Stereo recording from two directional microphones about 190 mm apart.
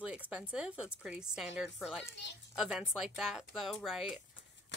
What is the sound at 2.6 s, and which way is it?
Speech, 5° right (ahead or behind).